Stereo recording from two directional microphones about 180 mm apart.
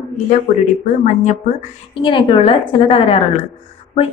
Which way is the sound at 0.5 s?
45° left (ahead or behind).